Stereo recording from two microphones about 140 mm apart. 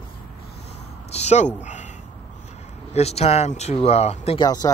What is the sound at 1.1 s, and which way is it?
Speech, 55° left (ahead or behind).